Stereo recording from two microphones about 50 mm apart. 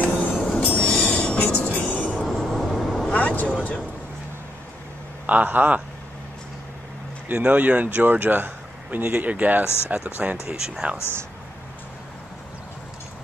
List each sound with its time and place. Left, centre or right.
0.0 s train: left
0.5 s train: centre
2.3 s train: centre
2.9 s vehicle: centre
3.2 s vehicle: left
5.2 s speech: right
7.2 s speech: right
10.3 s speech: centre